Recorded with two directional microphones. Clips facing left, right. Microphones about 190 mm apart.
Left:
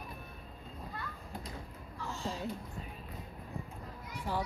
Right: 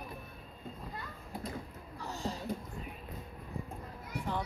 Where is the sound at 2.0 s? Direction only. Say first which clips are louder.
Right 1 dB; 40° right (ahead or behind).